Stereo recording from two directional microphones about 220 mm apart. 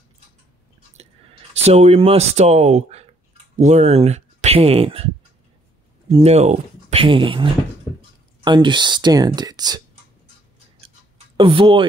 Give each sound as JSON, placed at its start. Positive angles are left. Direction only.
{"t": 1.5, "sound": "speech", "side_deg": -30}
{"t": 8.5, "sound": "speech", "side_deg": -20}
{"t": 11.3, "sound": "speech", "side_deg": -25}